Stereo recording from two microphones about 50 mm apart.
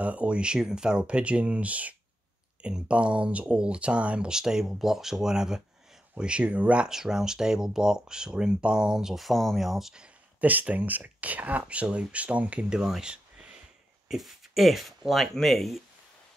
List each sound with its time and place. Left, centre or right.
0.0 s speech: right
6.9 s speech: centre
10.4 s speech: right; by 12.9 s centre
13.0 s a sound: centre
14.0 s speech: centre